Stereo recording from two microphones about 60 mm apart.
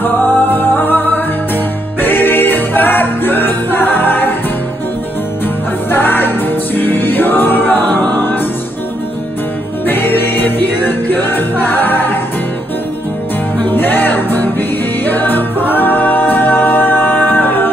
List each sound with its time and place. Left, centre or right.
0.0 s music: left
5.9 s music: left
9.8 s music: left
13.7 s music: left